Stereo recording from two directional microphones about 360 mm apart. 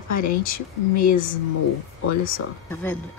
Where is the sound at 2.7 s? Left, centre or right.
Centre.